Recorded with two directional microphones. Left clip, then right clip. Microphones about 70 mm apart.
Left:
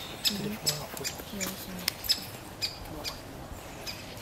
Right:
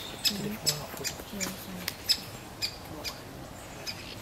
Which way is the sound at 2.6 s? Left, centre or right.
Centre.